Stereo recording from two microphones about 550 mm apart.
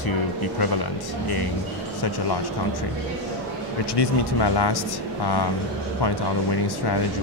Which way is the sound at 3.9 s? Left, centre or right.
Left.